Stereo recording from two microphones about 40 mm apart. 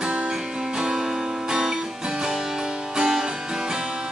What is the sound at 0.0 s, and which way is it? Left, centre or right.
Music, right.